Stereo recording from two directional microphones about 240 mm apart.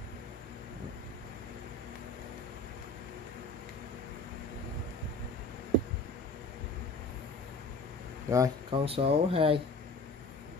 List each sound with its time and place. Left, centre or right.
8.3 s speech: centre